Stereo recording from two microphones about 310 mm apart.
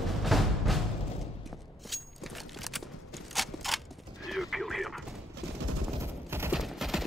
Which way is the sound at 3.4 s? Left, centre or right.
Centre.